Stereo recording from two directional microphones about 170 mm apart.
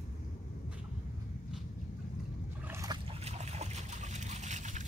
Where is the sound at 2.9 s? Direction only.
35° right (ahead or behind).